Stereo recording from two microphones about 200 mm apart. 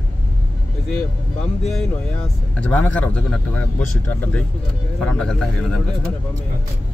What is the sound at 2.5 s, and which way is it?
A man's voice, 5° left (ahead or behind).